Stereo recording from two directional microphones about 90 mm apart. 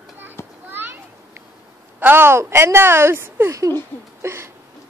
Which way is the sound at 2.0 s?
25° right (ahead or behind).